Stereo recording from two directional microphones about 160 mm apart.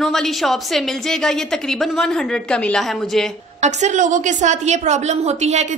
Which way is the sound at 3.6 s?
45° right (ahead or behind).